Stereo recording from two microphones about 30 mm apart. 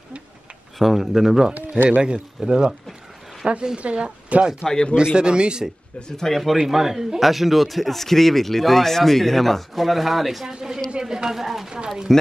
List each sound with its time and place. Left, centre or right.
0.7 s speech: centre
1.1 s speech: centre
1.9 s speech: right
3.7 s speech: right
5.9 s speech: left
6.2 s a man's voice: centre
6.5 s a man's voice: centre
11.0 s a sound: right
11.3 s a man's voice: centre
12.1 s speech: centre